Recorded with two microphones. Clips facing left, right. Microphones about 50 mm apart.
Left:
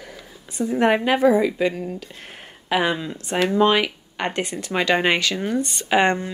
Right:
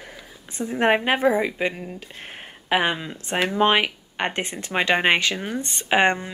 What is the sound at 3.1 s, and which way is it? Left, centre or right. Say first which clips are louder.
Speech: left 3 dB; right.